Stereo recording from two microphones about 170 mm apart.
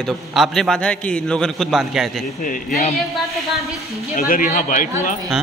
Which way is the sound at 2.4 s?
55° left (ahead or behind).